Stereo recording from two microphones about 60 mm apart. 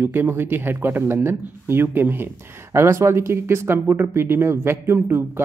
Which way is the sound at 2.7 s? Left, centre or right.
Right.